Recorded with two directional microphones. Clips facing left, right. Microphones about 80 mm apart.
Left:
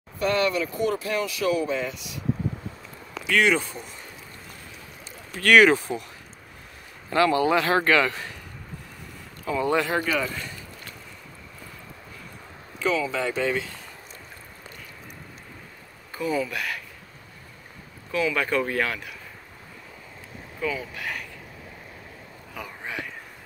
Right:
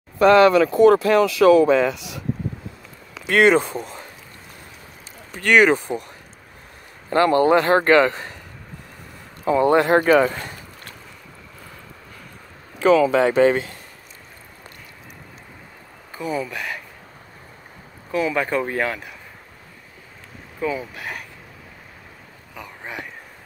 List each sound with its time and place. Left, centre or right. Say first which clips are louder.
0.2 s speech: right 11 dB; right
3.3 s a man's voice: right 6 dB; right
5.3 s speech: right 1 dB; centre
7.1 s a man's voice: right 5 dB; right
9.6 s speech: right 8 dB; right
12.7 s speech: right 10 dB; right
16.2 s speech: even; centre
18.1 s speech: right 3 dB; right
20.6 s speech: right 4 dB; right